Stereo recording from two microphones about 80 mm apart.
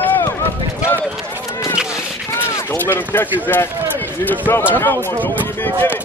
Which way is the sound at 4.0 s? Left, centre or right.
Left.